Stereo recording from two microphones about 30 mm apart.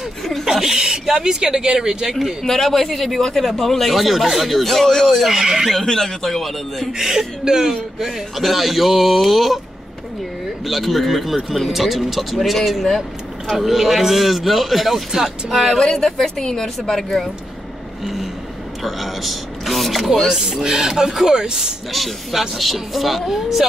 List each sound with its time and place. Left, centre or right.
0.5 s speech: centre
2.4 s a man's voice: centre
4.7 s a man's voice: centre
5.0 s speech: centre
5.3 s speech: centre
5.9 s a man's voice: centre
7.0 s speech: centre
8.4 s speech: centre
10.6 s speech: centre
15.8 s a man's voice: left; by 17.3 s centre
18.0 s vehicle: centre
18.8 s speech: centre
20.2 s speech: centre
21.9 s speech: centre